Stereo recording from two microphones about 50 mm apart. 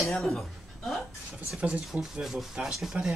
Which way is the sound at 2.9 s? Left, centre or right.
Right.